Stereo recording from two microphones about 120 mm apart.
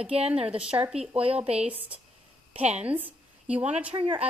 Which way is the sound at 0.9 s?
10° right (ahead or behind).